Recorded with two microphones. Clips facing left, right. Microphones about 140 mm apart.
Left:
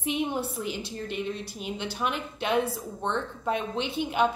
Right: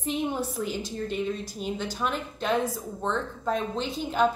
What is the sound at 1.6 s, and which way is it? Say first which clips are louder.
A woman's voice: right 1 dB; 5° left (ahead or behind).